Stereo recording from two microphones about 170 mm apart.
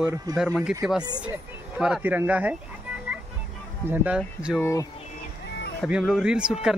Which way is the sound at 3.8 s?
5° right (ahead or behind).